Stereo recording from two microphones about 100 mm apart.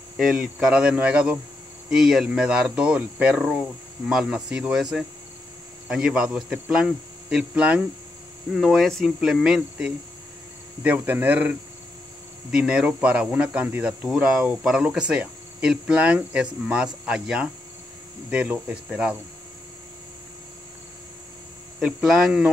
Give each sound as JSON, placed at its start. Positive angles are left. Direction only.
{"t": 0.2, "sound": "speech", "side_deg": -5}
{"t": 10.8, "sound": "speech", "side_deg": -20}
{"t": 21.7, "sound": "speech", "side_deg": -5}